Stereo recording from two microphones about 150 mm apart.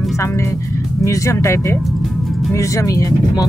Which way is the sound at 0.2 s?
20° left (ahead or behind).